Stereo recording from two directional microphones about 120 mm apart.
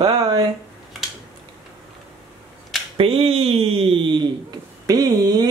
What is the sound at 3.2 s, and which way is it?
Speech, 55° right (ahead or behind).